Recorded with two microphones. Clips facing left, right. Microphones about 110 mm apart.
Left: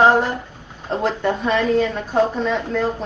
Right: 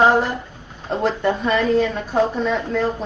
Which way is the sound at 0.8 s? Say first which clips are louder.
Right 1 dB; centre (ahead or behind).